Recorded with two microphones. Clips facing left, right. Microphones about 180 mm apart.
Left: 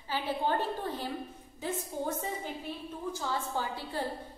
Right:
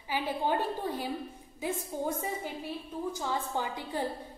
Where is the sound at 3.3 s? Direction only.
15° right (ahead or behind).